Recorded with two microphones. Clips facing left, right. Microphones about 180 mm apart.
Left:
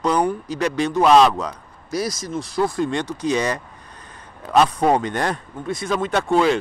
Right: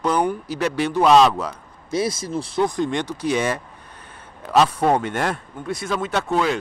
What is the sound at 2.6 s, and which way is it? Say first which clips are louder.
Speech: even; 20° right (ahead or behind).